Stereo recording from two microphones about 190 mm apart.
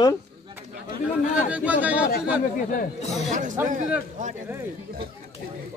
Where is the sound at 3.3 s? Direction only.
45° right (ahead or behind).